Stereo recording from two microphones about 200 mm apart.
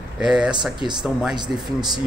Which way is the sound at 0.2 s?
5° right (ahead or behind).